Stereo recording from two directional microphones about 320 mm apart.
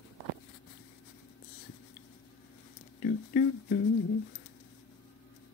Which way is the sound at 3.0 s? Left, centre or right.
Left.